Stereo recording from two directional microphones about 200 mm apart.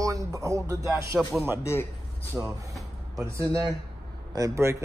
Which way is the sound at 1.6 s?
10° left (ahead or behind).